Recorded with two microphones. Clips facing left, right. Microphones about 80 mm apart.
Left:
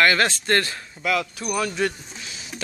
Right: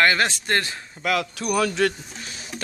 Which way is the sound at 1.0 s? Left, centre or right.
Right.